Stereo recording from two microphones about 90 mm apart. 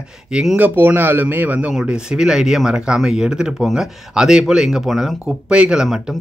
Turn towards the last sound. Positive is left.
turn(degrees=-5)  # may be behind; listen again after turning